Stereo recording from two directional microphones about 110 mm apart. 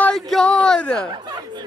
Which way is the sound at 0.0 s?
5° left (ahead or behind).